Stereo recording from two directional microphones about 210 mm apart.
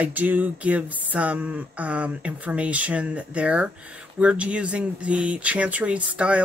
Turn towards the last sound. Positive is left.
turn(degrees=-5)  # may be behind; listen again after turning